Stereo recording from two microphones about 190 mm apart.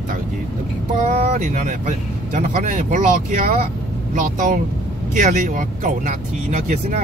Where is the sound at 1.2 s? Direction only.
40° right (ahead or behind).